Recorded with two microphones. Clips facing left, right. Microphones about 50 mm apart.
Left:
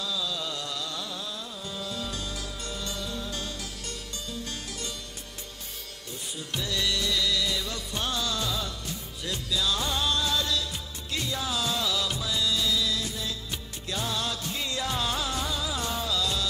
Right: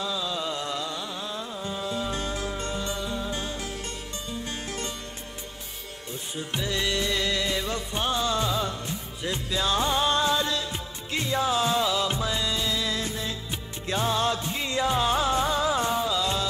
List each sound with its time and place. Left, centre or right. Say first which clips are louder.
0.0 s music: right 3 dB; right
6.3 s music: right 3 dB; right